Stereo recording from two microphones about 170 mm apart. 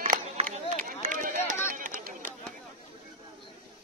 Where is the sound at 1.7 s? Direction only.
50° right (ahead or behind).